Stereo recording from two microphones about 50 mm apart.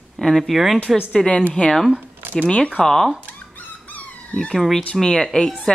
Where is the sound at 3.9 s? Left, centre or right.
Left.